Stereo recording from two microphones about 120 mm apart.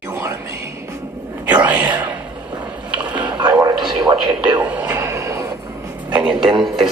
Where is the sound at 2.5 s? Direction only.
10° right (ahead or behind).